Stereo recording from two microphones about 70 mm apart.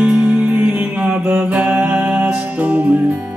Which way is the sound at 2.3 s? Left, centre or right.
Centre.